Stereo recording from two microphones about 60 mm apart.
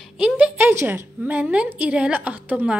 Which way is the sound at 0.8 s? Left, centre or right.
Right.